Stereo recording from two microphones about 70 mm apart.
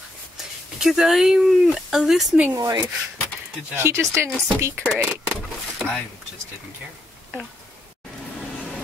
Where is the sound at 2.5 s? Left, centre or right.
Right.